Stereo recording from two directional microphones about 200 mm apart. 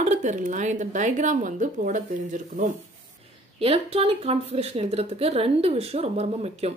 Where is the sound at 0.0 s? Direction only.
35° right (ahead or behind).